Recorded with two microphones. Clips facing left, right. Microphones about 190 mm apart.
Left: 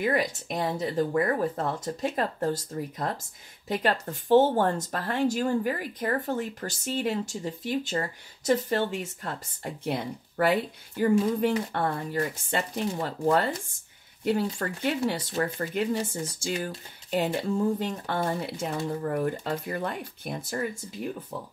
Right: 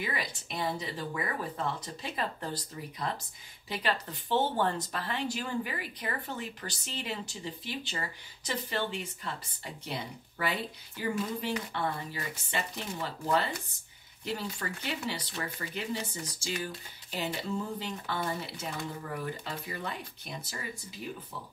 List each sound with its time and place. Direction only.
0.0 s speech: 45° left (ahead or behind)